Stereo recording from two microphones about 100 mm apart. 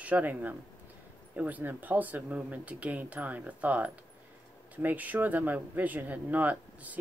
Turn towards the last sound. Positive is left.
turn(degrees=-15)  # may be behind; listen again after turning